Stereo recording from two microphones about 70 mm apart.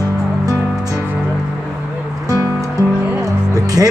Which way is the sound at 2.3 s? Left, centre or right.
Left.